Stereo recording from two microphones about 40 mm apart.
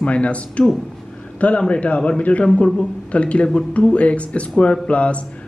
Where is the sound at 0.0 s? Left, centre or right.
Left.